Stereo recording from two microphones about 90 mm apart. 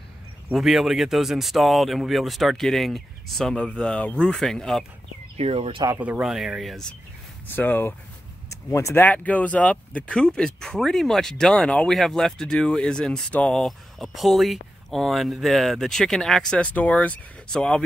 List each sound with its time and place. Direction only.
0.5 s speech: 5° right (ahead or behind)
5.6 s speech: 80° right
5.9 s speech: 15° right (ahead or behind); by 6.9 s centre (ahead or behind)
7.4 s speech: 20° left (ahead or behind)
8.5 s speech: 35° left (ahead or behind)
9.0 s speech: 15° left (ahead or behind)